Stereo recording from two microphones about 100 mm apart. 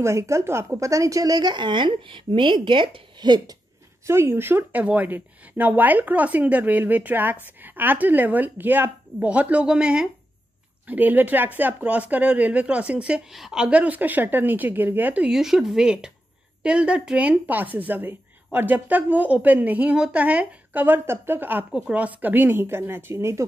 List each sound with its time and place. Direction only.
0.0 s speech: 30° right (ahead or behind)
4.0 s speech: 25° right (ahead or behind)
15.3 s speech: 5° right (ahead or behind); by 23.4 s 25° right (ahead or behind)